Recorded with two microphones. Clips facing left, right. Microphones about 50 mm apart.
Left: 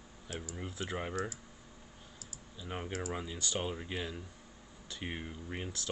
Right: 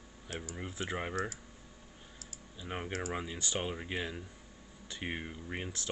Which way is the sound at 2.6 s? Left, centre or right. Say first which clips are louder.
Right 1 dB; centre.